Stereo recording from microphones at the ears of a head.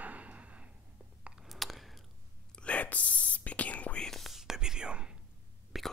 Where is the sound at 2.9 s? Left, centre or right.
Left.